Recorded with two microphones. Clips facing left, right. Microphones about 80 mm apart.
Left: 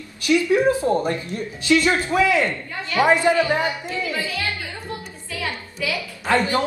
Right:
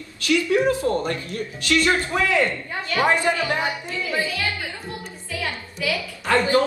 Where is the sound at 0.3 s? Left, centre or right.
Left.